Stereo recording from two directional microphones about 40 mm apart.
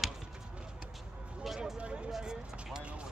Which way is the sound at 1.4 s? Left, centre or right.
Centre.